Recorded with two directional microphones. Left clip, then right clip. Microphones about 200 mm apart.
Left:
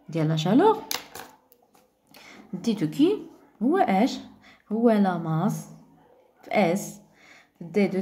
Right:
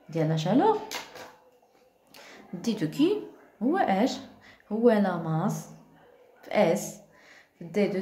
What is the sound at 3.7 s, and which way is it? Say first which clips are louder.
Speech: left 3 dB; 10° left (ahead or behind).